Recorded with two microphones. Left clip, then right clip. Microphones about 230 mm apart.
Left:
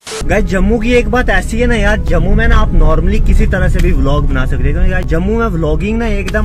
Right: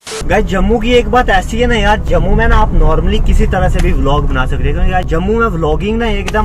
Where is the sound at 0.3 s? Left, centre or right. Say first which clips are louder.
Right 1 dB; right.